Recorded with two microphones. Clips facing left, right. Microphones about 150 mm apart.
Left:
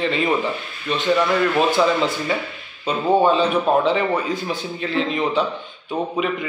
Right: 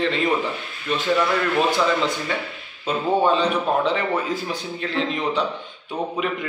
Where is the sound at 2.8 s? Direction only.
5° left (ahead or behind).